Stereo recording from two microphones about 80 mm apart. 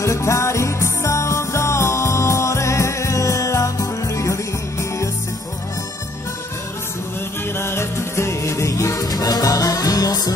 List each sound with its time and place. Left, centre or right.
0.0 s music: left
7.5 s music: left
9.0 s music: left